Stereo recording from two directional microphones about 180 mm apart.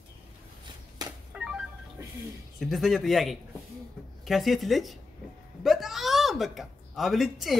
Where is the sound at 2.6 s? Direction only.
Centre (ahead or behind).